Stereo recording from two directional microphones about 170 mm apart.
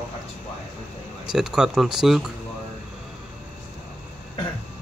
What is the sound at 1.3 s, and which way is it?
Speech, 5° right (ahead or behind).